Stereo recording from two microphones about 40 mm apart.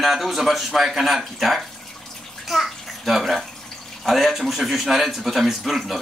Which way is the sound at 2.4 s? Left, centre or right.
Centre.